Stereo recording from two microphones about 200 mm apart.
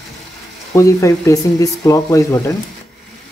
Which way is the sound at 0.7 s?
15° left (ahead or behind).